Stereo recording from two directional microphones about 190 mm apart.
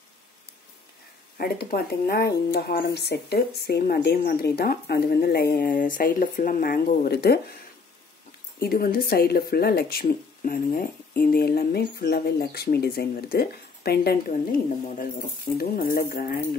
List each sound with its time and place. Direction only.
1.4 s speech: 55° left (ahead or behind)
8.5 s speech: 55° left (ahead or behind)
15.5 s speech: 50° left (ahead or behind)